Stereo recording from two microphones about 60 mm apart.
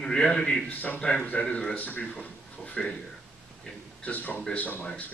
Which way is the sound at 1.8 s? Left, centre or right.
Left.